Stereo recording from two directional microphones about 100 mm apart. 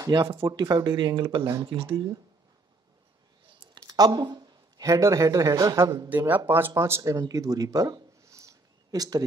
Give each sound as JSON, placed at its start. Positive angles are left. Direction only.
{"t": 0.3, "sound": "speech", "side_deg": -25}
{"t": 0.6, "sound": "speech", "side_deg": -45}
{"t": 1.7, "sound": "speech", "side_deg": -70}
{"t": 3.7, "sound": "speech", "side_deg": -40}
{"t": 6.0, "sound": "speech", "side_deg": -15}
{"t": 6.7, "sound": "speech", "side_deg": -30}